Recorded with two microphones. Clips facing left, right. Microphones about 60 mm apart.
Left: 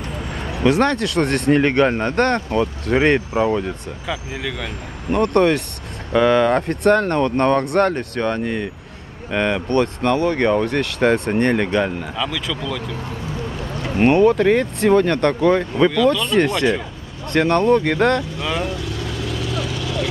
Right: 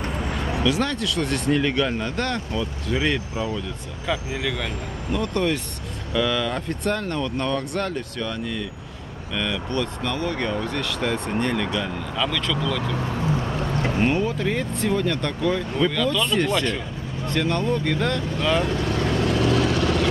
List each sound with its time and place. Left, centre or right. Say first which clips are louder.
0.6 s speech: left 8 dB; left
4.1 s speech: right 1 dB; centre
5.1 s speech: left 8 dB; left
12.2 s speech: right 1 dB; centre
14.0 s speech: left 12 dB; left
15.9 s speech: left 6 dB; centre
17.3 s speech: left 8 dB; left
18.7 s vehicle: right 3 dB; right